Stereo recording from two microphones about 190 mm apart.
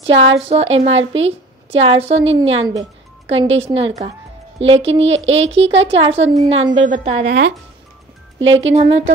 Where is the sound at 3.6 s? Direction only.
30° right (ahead or behind).